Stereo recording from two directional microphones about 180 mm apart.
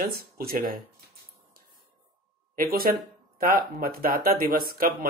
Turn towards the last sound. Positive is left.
turn(degrees=-55)  # may be behind; listen again after turning